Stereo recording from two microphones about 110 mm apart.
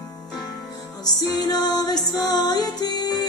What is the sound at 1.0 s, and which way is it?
Music, 40° left (ahead or behind).